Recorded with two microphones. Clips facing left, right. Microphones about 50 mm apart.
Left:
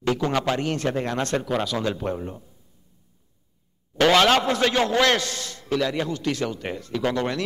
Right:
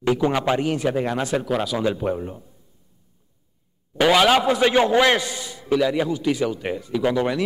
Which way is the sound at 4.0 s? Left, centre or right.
Centre.